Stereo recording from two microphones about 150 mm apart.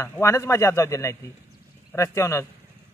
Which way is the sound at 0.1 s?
20° left (ahead or behind).